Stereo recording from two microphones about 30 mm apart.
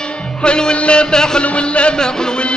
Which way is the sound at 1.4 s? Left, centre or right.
Left.